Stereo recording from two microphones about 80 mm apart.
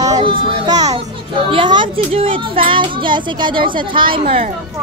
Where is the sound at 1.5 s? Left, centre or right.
Right.